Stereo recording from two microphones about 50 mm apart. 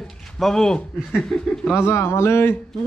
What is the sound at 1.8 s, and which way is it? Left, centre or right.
Speech, left.